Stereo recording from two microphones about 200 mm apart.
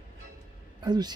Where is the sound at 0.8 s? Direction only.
20° right (ahead or behind).